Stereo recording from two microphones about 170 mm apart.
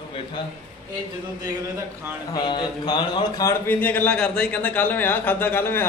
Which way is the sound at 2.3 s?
30° left (ahead or behind).